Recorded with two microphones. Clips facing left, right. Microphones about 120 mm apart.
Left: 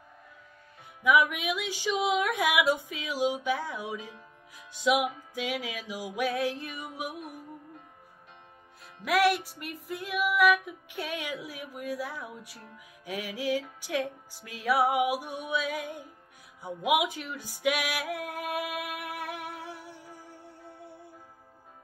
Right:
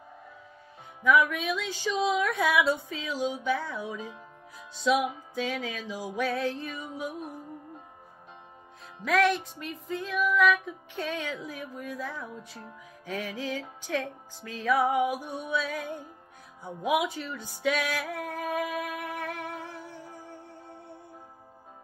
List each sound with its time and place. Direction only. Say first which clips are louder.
1.0 s music: right 1 dB; 15° left (ahead or behind)
7.2 s music: right 3 dB; 25° right (ahead or behind)
9.0 s music: even; 10° left (ahead or behind)
17.4 s music: right 2 dB; 20° right (ahead or behind)
17.6 s music: right 1 dB; 15° left (ahead or behind)